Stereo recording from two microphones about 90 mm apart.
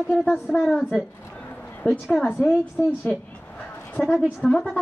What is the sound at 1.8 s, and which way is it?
Speech, 15° left (ahead or behind).